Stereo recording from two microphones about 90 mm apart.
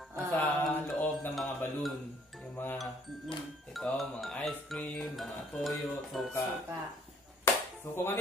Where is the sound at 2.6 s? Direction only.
20° left (ahead or behind).